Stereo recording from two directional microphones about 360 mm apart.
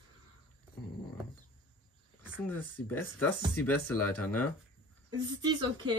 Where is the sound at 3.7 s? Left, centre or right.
Left.